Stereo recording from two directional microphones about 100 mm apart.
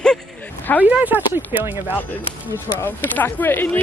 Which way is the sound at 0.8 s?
15° right (ahead or behind).